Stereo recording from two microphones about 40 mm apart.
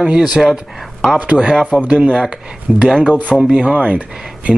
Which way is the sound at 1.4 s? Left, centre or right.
Right.